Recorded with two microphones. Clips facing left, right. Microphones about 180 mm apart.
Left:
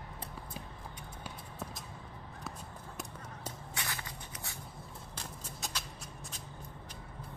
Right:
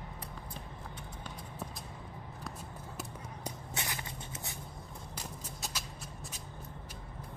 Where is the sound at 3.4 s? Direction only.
20° right (ahead or behind).